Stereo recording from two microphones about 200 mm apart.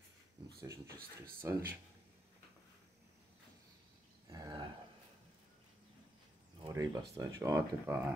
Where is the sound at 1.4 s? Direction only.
10° right (ahead or behind).